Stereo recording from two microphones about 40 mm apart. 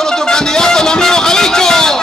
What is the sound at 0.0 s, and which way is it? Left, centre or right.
Music, centre.